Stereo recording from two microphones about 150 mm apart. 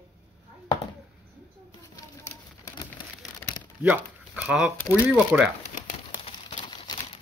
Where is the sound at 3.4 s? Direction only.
15° left (ahead or behind).